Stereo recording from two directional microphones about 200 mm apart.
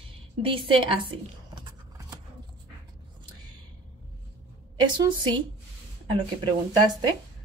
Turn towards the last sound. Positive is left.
turn(degrees=-20)  # may be behind; listen again after turning